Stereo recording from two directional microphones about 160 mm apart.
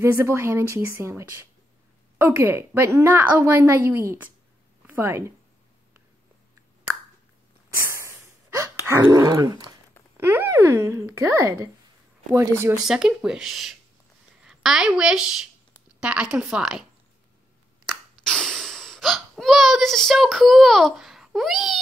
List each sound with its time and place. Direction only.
0.0 s a woman's voice: 15° right (ahead or behind)
7.7 s snort: 15° right (ahead or behind)
8.8 s dog: 20° right (ahead or behind)
10.1 s a woman's voice: 15° right (ahead or behind)
12.8 s a woman's voice: 5° right (ahead or behind)
17.8 s gasp: 5° left (ahead or behind)